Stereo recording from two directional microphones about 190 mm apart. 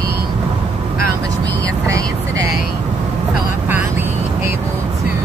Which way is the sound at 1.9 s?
15° right (ahead or behind).